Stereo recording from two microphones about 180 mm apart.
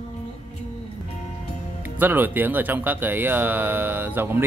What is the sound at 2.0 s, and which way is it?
A man's voice, 10° right (ahead or behind).